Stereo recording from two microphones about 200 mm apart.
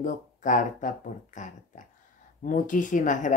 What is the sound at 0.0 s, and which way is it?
Speech, 40° left (ahead or behind).